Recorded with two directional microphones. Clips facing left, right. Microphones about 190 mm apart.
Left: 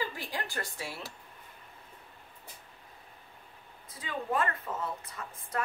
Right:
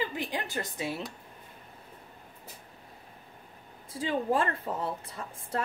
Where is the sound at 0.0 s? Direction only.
20° right (ahead or behind).